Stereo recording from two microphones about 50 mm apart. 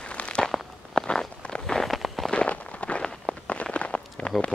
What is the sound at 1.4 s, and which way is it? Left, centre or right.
Walk, centre.